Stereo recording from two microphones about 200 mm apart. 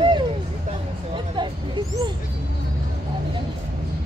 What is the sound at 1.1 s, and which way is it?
Vehicle, 25° right (ahead or behind).